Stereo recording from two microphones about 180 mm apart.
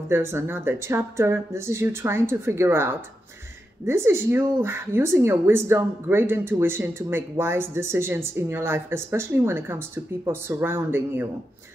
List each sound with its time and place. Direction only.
0.1 s a woman's voice: 15° right (ahead or behind)